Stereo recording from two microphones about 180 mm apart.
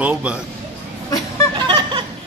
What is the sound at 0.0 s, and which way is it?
Chink, 5° right (ahead or behind).